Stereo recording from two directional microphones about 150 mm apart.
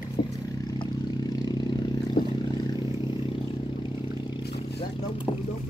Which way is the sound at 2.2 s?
70° left (ahead or behind).